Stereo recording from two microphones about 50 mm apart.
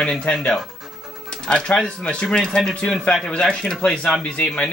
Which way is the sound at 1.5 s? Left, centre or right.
Centre.